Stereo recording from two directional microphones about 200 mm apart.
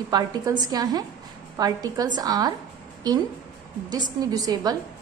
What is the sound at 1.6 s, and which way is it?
Speech, 20° right (ahead or behind).